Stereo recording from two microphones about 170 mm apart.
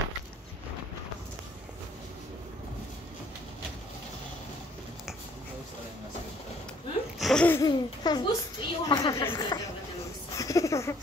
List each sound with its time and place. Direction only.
7.2 s gasp: centre (ahead or behind)
7.4 s a child's voice: 20° left (ahead or behind)
10.3 s a sound: 20° left (ahead or behind)